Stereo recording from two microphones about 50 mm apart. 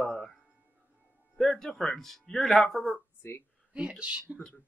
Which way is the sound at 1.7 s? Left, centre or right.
Centre.